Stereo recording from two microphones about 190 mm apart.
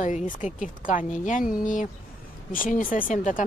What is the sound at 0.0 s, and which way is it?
Speech, 40° left (ahead or behind).